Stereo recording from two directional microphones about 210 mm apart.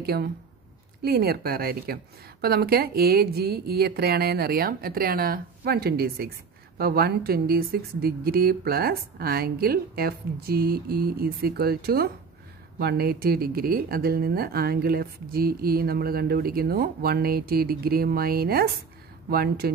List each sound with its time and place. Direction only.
0.0 s speech: 50° right (ahead or behind)